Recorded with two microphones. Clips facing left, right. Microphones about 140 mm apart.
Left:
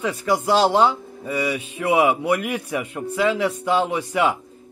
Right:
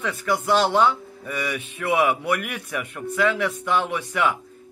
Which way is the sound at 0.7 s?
25° left (ahead or behind).